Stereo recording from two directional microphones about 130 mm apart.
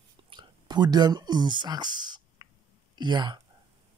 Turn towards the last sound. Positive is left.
turn(degrees=-35)  # may be behind; listen again after turning